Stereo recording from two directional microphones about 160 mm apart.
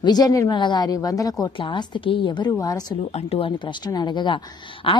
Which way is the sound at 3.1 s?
40° left (ahead or behind).